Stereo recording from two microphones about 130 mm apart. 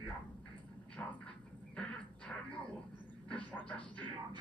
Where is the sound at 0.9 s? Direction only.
10° left (ahead or behind).